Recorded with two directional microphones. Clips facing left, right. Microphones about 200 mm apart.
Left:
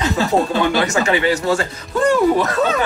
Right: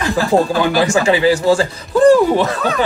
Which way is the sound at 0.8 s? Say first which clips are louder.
Right 4 dB; 30° right (ahead or behind).